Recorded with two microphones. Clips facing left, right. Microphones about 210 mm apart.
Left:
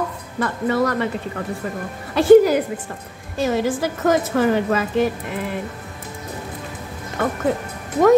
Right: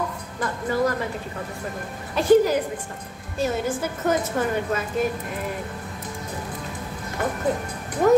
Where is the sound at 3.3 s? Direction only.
90° left.